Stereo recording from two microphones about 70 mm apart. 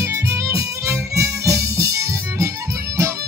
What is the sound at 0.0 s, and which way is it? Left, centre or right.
Violin, right.